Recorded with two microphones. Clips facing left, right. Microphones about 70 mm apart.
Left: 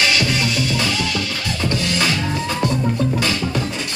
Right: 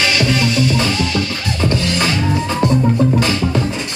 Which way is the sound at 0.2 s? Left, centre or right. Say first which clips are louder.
Right 4 dB; right.